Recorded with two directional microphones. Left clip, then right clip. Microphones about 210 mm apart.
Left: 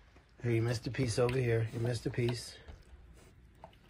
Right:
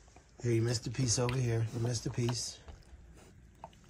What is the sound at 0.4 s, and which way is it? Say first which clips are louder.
Speech: right 1 dB; 5° right (ahead or behind).